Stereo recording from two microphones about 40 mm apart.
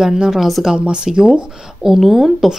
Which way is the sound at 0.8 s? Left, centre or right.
Right.